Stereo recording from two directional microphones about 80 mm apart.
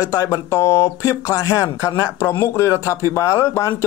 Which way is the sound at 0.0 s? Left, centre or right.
Left.